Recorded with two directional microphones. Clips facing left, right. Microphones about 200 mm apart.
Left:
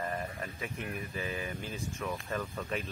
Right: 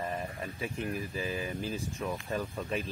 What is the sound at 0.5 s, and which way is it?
Speech, 30° right (ahead or behind).